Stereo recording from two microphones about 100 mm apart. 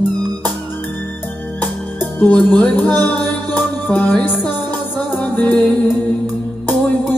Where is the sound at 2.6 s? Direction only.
20° left (ahead or behind).